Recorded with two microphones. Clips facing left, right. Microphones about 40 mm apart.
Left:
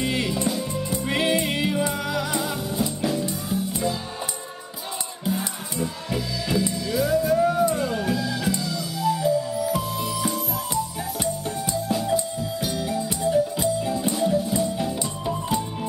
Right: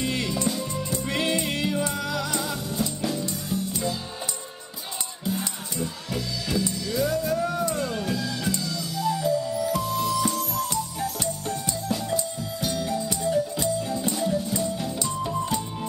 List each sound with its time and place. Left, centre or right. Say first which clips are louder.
0.0 s music: left 2 dB; centre
5.2 s music: left 2 dB; centre